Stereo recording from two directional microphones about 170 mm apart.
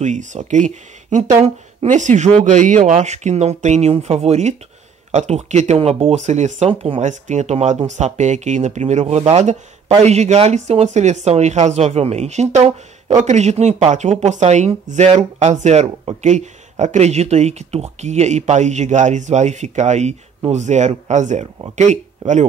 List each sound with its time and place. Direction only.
0.0 s speech: 45° right (ahead or behind)
7.0 s speech: 45° right (ahead or behind)